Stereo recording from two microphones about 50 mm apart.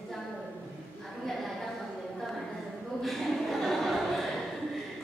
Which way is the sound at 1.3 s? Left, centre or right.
Centre.